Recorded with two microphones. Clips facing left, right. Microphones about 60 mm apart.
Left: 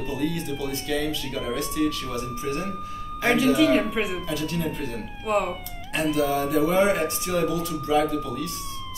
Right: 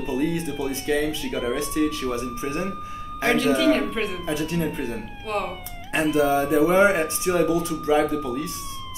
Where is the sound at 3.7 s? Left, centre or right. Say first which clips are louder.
Left 1 dB; centre.